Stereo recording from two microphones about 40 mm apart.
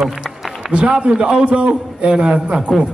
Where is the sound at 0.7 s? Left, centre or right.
Right.